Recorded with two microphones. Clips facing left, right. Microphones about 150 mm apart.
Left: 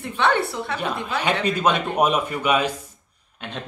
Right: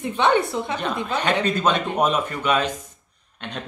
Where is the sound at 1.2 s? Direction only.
10° left (ahead or behind).